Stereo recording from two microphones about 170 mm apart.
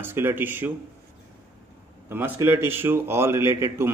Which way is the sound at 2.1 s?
15° right (ahead or behind).